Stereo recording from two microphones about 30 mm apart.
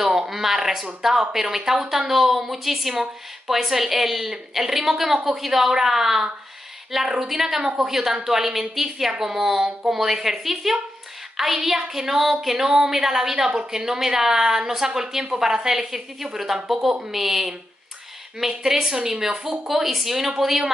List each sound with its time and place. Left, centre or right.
0.3 s a woman's voice: centre
18.7 s a woman's voice: centre
19.7 s a woman's voice: centre